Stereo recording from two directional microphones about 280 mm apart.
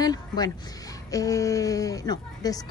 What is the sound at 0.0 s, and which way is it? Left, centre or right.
Speech, centre.